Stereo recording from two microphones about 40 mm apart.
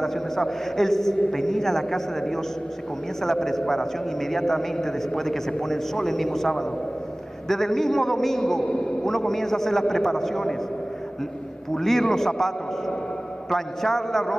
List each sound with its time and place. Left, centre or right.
0.0 s a man's voice: centre
11.7 s a man's voice: centre